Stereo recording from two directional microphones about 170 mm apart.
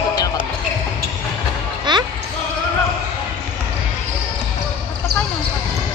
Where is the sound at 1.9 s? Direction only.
25° right (ahead or behind).